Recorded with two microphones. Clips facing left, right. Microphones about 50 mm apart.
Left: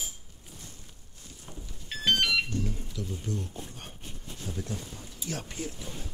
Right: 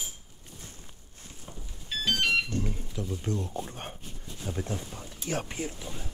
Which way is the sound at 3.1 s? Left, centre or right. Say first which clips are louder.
Right 5 dB; right.